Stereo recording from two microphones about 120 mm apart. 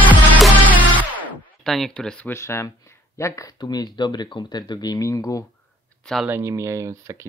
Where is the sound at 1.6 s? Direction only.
Centre (ahead or behind).